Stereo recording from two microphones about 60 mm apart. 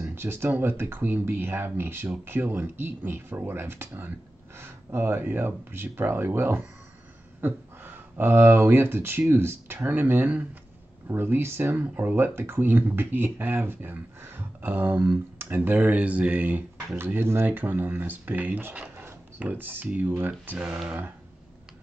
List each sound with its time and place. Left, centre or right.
0.1 s speech: right
9.8 s speech: right
16.9 s speech: right
17.5 s speech: right
20.5 s speech: centre